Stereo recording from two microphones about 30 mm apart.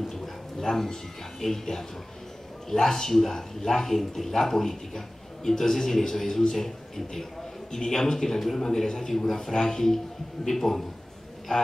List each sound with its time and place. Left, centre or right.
0.1 s a sound: centre
1.4 s speech: centre
7.7 s speech: centre
8.6 s speech: centre